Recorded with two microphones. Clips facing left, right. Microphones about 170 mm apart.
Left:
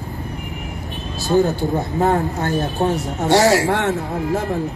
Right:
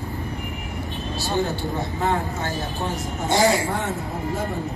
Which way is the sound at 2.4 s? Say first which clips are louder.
Left 8 dB; 60° left (ahead or behind).